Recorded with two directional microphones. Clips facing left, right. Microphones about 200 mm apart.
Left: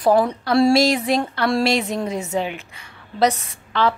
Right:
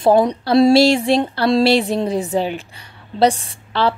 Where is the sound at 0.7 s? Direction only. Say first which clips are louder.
Right 4 dB; 30° right (ahead or behind).